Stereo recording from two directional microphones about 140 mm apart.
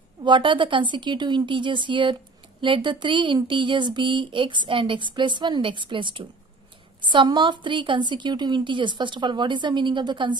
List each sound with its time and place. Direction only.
0.2 s speech: 35° right (ahead or behind)